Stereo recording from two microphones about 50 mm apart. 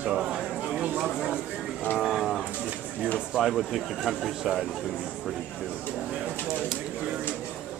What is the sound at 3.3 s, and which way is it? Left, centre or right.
Speech, centre.